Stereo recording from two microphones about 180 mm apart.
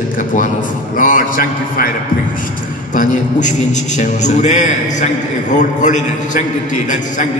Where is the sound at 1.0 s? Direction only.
50° left (ahead or behind).